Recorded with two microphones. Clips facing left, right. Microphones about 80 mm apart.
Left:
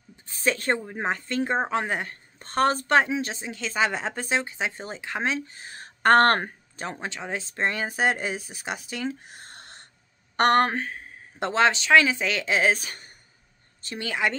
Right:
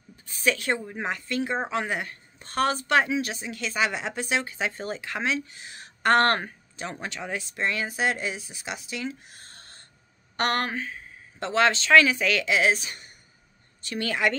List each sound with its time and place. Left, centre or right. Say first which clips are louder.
0.3 s a sound: even; left
0.6 s a woman's voice: left 2 dB; left
6.9 s a woman's voice: left 1 dB; left
11.5 s speech: even; left
13.8 s speech: right 1 dB; centre